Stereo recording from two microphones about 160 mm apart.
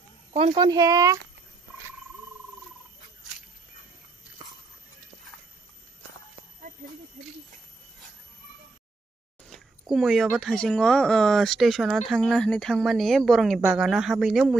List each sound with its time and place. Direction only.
0.3 s speech: 40° right (ahead or behind)
0.6 s speech: 25° right (ahead or behind)
4.4 s a sound: 30° right (ahead or behind)
9.5 s speech: centre (ahead or behind)